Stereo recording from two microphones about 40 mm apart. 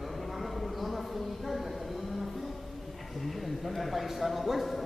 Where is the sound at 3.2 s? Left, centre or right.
Centre.